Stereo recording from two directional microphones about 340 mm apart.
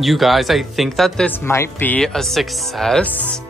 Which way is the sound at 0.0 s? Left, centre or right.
Centre.